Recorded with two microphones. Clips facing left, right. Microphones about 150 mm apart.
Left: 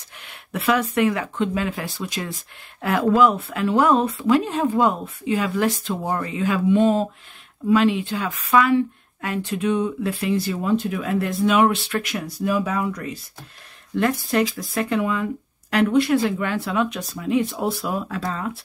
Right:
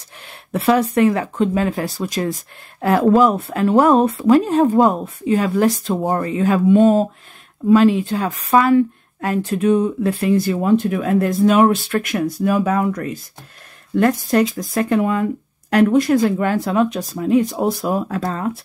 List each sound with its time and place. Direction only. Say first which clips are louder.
0.2 s speech: right 6 dB; 35° right (ahead or behind)
14.6 s speech: right 5 dB; 40° right (ahead or behind)